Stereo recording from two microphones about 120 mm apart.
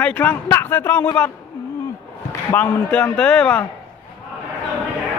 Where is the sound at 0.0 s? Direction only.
15° left (ahead or behind).